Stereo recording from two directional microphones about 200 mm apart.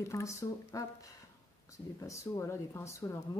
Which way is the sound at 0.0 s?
15° left (ahead or behind).